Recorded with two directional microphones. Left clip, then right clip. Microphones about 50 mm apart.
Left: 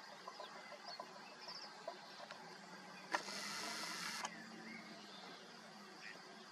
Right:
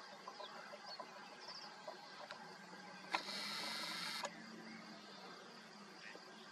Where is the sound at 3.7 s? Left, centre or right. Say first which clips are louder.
Right 1 dB; right.